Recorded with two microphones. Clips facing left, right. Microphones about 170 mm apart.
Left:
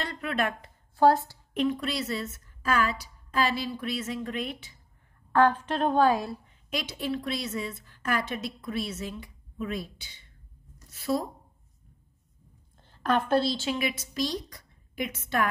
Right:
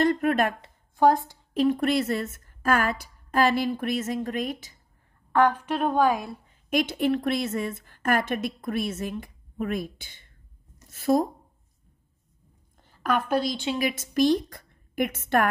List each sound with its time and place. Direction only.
0.0 s a woman's voice: 45° right (ahead or behind)
0.6 s a sound: 20° right (ahead or behind)
1.7 s a woman's voice: 50° right (ahead or behind)
5.3 s a woman's voice: 10° right (ahead or behind)
6.7 s a woman's voice: 50° right (ahead or behind)
12.7 s a sound: 10° right (ahead or behind)
13.7 s a woman's voice: 45° right (ahead or behind)